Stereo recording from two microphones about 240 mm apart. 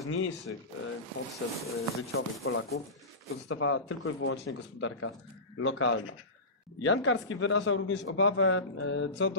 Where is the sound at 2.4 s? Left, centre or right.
Left.